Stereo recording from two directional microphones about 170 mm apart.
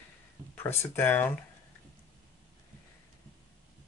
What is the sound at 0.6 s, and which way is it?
Speech, 15° left (ahead or behind).